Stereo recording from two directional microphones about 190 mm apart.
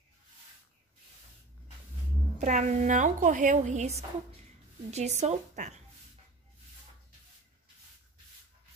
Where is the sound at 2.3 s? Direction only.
40° right (ahead or behind).